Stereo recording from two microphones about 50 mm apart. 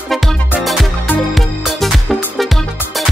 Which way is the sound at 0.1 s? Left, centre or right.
Centre.